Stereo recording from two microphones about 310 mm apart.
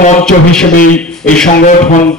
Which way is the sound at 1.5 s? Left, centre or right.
Left.